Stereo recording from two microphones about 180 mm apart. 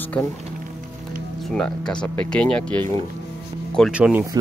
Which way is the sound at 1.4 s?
5° left (ahead or behind).